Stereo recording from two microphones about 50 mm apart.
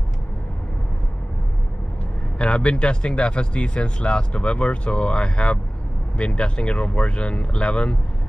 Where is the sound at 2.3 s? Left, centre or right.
Left.